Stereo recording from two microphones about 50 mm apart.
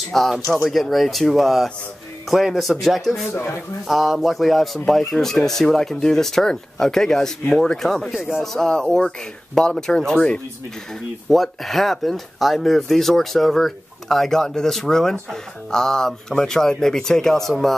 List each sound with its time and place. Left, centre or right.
0.1 s speech: centre
3.3 s speech: left
3.8 s speech: centre
11.2 s speech: centre